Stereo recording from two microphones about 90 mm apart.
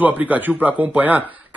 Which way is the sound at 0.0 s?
20° right (ahead or behind).